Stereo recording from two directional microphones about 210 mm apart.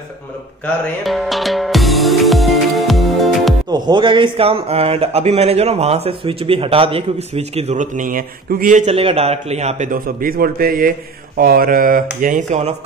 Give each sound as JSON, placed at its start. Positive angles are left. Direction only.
{"t": 1.0, "sound": "music", "side_deg": 0}
{"t": 3.7, "sound": "a man's voice", "side_deg": -20}